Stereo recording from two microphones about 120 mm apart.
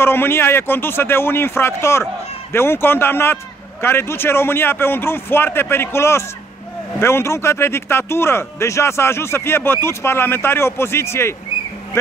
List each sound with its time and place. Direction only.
0.0 s speech: 20° left (ahead or behind)